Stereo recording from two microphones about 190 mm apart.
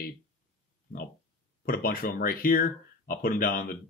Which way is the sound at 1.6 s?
50° left (ahead or behind).